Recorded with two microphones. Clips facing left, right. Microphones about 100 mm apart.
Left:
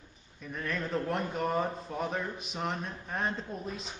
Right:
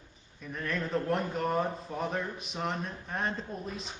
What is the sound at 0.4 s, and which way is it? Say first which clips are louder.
Speech: right 1 dB; centre (ahead or behind).